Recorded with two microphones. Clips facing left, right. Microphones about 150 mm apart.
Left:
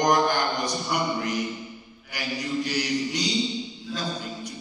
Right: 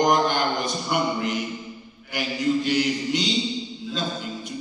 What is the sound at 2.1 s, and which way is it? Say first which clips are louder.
A man's voice: right 6 dB; 20° right (ahead or behind).